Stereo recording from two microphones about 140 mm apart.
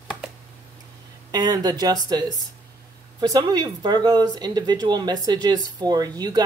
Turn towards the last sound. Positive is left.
turn(degrees=-30)  # may be behind; listen again after turning